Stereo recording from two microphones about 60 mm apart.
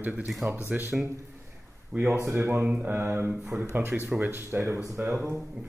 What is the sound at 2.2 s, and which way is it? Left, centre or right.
Speech, right.